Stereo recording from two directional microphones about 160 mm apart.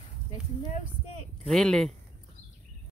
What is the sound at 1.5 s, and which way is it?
Speech, 5° left (ahead or behind).